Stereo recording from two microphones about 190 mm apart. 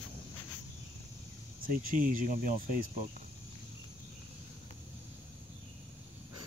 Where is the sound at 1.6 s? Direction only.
50° right (ahead or behind).